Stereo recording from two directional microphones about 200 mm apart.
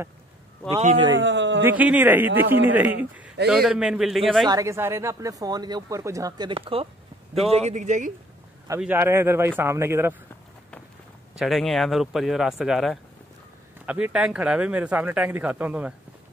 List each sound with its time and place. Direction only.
0.7 s a man's voice: 30° right (ahead or behind)
1.0 s a man's voice: 65° right (ahead or behind)
1.6 s speech: 10° right (ahead or behind)
4.5 s a man's voice: 15° right (ahead or behind); by 8.1 s 35° right (ahead or behind)
8.6 s speech: 10° right (ahead or behind)
11.3 s speech: centre (ahead or behind)